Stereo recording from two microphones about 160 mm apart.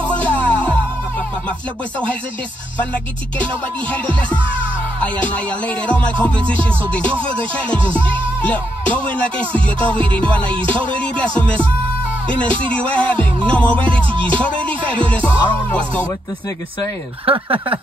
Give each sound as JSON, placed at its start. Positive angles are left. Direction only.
{"t": 0.2, "sound": "music", "side_deg": 10}
{"t": 2.8, "sound": "music", "side_deg": 10}